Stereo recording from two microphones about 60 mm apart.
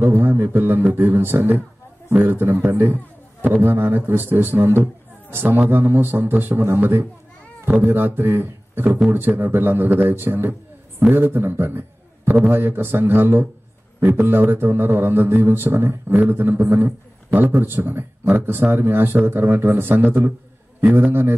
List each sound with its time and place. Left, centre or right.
0.0 s a man's voice: right